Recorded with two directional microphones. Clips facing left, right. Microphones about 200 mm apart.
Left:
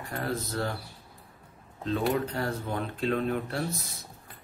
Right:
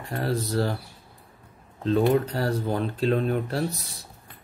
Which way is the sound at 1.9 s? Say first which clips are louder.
Right 6 dB; 40° right (ahead or behind).